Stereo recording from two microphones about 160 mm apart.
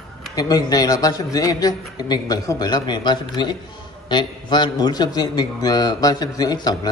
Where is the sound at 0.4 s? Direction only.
25° left (ahead or behind).